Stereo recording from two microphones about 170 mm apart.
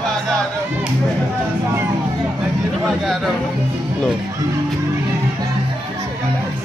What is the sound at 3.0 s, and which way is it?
Speech, centre (ahead or behind).